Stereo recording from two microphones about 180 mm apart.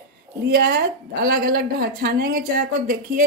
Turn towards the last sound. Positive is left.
turn(degrees=-50)  # may be behind; listen again after turning